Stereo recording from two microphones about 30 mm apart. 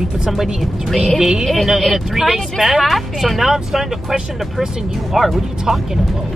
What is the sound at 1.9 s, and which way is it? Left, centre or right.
Speech, centre.